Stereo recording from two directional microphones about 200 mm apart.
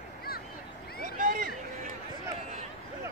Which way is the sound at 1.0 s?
45° right (ahead or behind).